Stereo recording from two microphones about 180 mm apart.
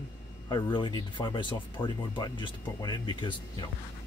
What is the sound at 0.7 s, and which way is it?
Speech, 25° left (ahead or behind).